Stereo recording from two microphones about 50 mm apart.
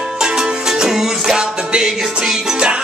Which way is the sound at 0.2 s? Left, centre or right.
Centre.